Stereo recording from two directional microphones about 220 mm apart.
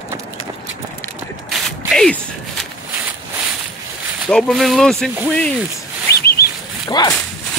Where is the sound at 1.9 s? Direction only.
Centre (ahead or behind).